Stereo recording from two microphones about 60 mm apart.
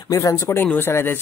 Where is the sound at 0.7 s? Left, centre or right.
Left.